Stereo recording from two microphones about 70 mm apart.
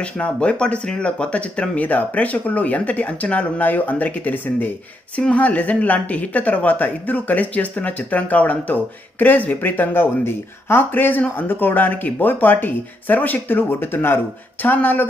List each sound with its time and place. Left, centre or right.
0.0 s speech: centre